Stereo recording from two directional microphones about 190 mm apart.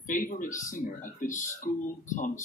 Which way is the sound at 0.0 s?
45° left (ahead or behind).